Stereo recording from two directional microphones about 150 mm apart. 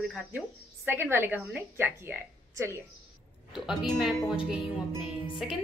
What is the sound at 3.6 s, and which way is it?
Speech, centre (ahead or behind).